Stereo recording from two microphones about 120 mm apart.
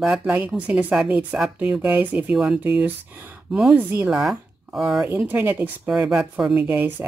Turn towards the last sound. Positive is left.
turn(degrees=-15)  # may be behind; listen again after turning